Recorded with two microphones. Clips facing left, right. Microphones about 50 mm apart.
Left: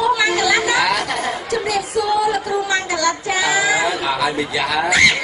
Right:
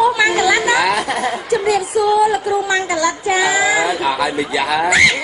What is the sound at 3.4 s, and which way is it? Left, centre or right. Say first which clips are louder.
Speech: right 1 dB; right.